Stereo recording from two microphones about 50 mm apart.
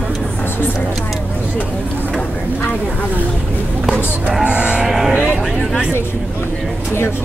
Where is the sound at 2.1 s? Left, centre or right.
Left.